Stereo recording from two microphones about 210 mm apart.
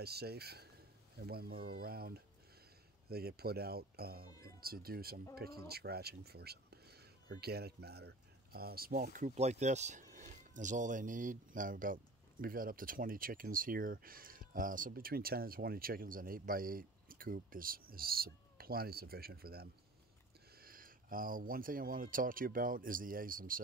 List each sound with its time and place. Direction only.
0.0 s speech: 50° right (ahead or behind)